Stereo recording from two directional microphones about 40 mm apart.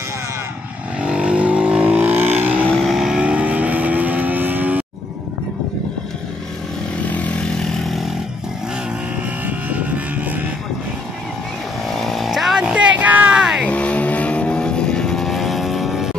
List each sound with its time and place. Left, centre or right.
0.9 s vehicle: right
2.0 s vehicle: right
3.0 s vehicle: centre
3.3 s vehicle: right
7.1 s vehicle: left
9.5 s vehicle: right
11.9 s chainsaw: centre
12.5 s a sound: right
12.9 s a sound: right
13.7 s vehicle: left; by 15.2 s centre
15.2 s vehicle: centre